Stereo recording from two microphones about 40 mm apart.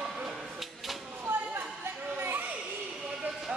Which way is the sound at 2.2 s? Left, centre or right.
Right.